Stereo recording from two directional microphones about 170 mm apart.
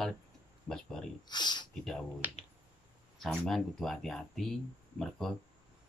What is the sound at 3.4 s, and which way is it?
Speech, centre (ahead or behind).